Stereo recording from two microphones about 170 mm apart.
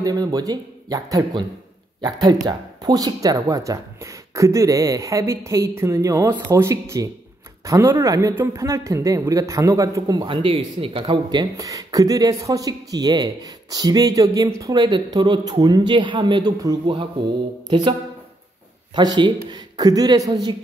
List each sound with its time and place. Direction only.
0.0 s speech: 20° right (ahead or behind)
18.9 s speech: 25° right (ahead or behind)